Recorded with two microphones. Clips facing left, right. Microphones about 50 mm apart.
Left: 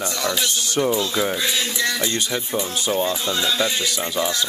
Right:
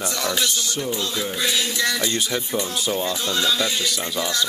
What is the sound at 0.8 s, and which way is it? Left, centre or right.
Speech, left.